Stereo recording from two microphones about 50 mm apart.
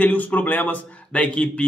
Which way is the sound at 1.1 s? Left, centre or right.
Left.